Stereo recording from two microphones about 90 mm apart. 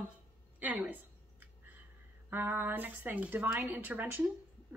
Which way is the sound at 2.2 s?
25° right (ahead or behind).